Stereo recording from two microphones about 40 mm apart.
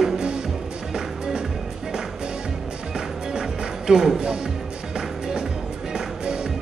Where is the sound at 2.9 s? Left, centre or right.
Centre.